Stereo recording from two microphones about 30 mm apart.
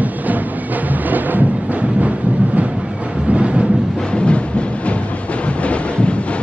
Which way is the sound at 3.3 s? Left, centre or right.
Right.